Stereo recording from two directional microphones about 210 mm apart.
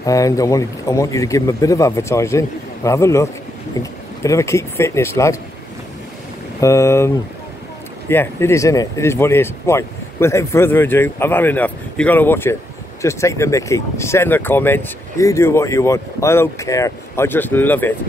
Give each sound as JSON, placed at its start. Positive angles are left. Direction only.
{"t": 0.0, "sound": "speech", "side_deg": 15}
{"t": 6.6, "sound": "speech", "side_deg": 15}
{"t": 8.1, "sound": "speech", "side_deg": 10}